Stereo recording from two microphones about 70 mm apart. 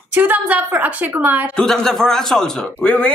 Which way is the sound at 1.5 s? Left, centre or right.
Centre.